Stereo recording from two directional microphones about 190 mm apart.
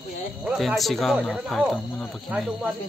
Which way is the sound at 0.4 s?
5° right (ahead or behind).